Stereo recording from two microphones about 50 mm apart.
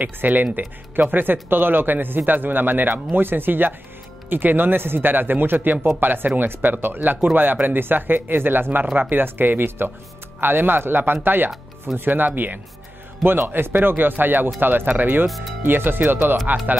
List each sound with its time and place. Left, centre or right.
0.0 s speech: right
15.2 s speech: centre
15.6 s speech: right